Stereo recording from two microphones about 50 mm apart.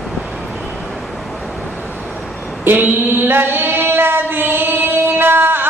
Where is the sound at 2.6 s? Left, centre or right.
Right.